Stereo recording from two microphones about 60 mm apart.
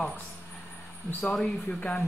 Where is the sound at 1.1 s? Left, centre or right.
Left.